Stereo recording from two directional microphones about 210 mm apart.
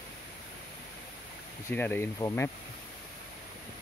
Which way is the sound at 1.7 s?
10° left (ahead or behind).